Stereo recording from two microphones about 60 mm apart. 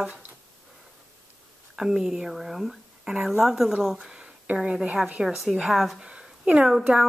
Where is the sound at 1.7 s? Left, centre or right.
Centre.